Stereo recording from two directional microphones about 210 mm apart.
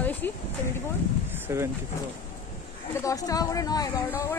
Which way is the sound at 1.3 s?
10° right (ahead or behind).